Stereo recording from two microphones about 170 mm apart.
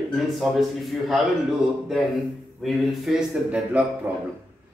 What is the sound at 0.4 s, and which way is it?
Speech, centre (ahead or behind).